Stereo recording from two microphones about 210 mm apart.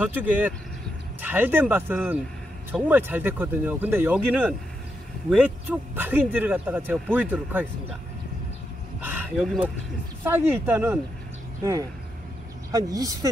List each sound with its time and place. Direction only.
0.0 s speech: 10° right (ahead or behind)
9.0 s a sound: 10° right (ahead or behind)
10.2 s speech: 10° right (ahead or behind)
12.7 s speech: 15° right (ahead or behind)